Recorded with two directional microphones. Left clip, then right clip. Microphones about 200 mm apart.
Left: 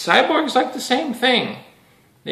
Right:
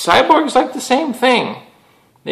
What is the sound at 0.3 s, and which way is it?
Speech, 5° left (ahead or behind).